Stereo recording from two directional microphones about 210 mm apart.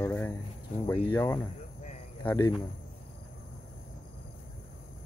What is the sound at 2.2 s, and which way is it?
Speech, 20° left (ahead or behind).